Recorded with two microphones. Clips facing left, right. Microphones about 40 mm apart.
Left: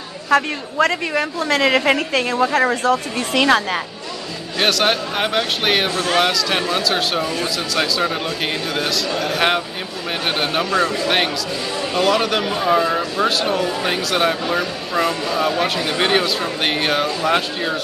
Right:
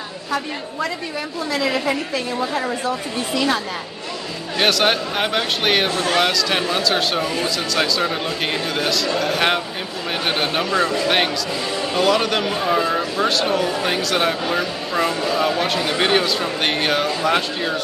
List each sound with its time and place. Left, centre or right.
0.3 s a woman's voice: left
4.6 s speech: centre
10.7 s a man's voice: centre
12.0 s speech: centre